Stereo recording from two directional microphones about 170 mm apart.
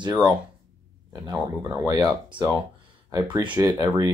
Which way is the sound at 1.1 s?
15° right (ahead or behind).